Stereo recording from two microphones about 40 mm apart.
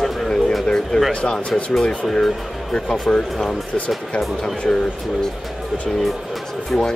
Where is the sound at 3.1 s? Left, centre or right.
Centre.